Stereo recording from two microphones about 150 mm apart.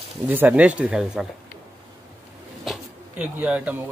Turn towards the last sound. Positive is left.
turn(degrees=-10)  # may be behind; listen again after turning